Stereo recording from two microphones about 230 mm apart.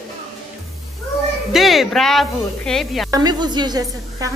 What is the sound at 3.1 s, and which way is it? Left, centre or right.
Speech, centre.